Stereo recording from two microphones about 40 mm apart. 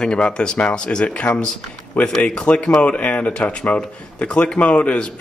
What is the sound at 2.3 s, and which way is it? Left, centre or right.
Speech, left.